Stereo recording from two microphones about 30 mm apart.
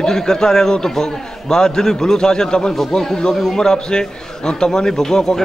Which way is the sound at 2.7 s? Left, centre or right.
Centre.